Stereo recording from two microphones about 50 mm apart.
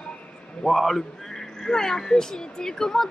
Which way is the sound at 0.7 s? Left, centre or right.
Centre.